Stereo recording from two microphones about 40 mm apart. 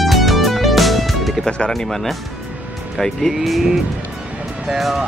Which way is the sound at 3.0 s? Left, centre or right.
Centre.